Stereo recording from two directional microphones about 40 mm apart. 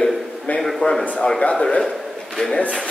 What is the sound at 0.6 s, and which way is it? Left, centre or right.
Speech, centre.